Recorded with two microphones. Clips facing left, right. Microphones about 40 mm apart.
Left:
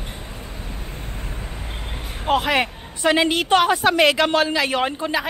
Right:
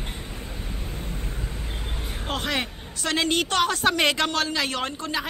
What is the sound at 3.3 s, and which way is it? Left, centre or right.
Speech, centre.